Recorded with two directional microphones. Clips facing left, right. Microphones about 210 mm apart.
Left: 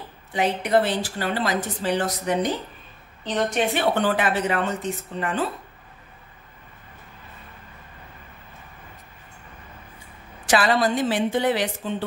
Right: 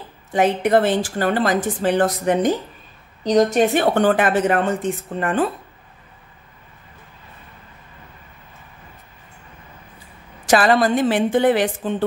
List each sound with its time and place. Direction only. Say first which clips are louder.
0.3 s a woman's voice: right 5 dB; 50° right (ahead or behind)
3.3 s a woman's voice: right 8 dB; 40° right (ahead or behind)
10.4 s a woman's voice: right 5 dB; 45° right (ahead or behind)